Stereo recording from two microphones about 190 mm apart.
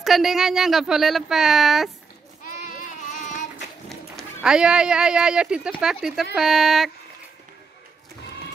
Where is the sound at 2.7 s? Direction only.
45° left (ahead or behind).